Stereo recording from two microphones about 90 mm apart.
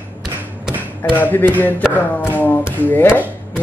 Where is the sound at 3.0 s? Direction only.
15° right (ahead or behind).